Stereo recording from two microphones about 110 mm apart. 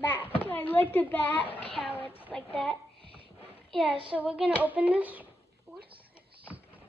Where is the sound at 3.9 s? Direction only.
50° right (ahead or behind).